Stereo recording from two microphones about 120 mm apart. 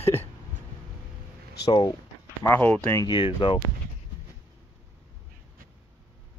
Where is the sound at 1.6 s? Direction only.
35° left (ahead or behind).